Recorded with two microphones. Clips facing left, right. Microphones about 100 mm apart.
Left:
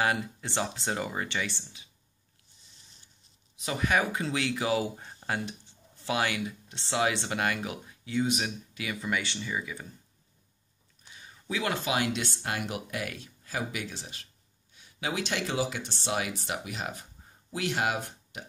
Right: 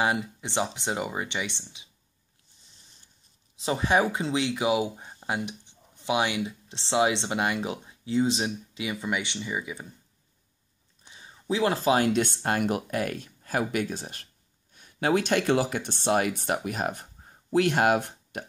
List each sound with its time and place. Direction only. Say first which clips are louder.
0.0 s speech: right 2 dB; 20° right (ahead or behind)
3.5 s speech: right 4 dB; 30° right (ahead or behind)
11.1 s speech: right 8 dB; 25° right (ahead or behind); by 18.4 s 55° right (ahead or behind)